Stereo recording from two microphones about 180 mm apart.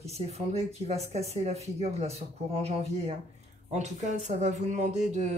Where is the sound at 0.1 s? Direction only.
35° right (ahead or behind).